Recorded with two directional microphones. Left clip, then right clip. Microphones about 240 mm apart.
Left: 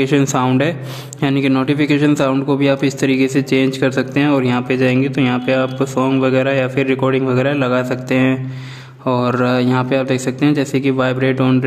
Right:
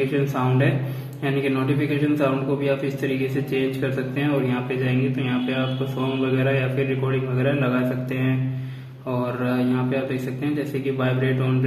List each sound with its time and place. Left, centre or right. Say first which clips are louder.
0.1 s a man's voice: left 8 dB; left